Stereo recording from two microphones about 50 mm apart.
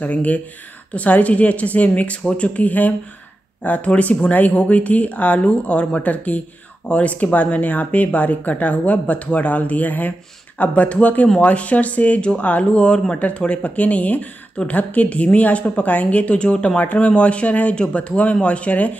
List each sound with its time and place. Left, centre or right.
0.0 s speech: left